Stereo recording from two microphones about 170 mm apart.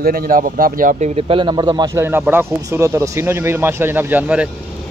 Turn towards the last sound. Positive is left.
turn(degrees=-10)  # may be behind; listen again after turning